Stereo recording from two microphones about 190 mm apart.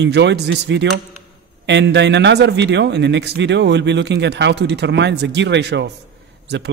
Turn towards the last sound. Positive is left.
turn(degrees=-65)  # may be behind; listen again after turning